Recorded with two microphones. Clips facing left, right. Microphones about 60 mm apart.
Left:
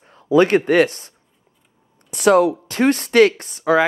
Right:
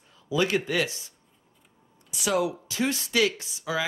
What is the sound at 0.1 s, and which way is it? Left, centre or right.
Speech, left.